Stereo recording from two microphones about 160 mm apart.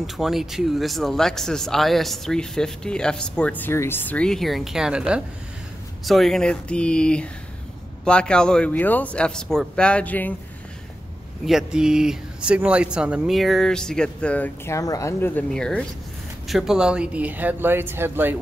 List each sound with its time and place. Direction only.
0.0 s speech: centre (ahead or behind)
11.4 s speech: 5° right (ahead or behind)